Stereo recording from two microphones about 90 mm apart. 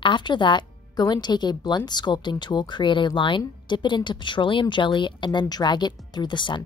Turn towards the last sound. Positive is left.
turn(degrees=60)  # may be behind; listen again after turning